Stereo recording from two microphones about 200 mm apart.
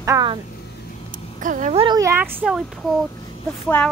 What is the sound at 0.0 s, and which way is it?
Speech, 15° right (ahead or behind).